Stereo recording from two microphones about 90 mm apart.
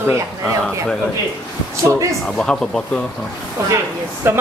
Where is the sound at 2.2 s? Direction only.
10° left (ahead or behind).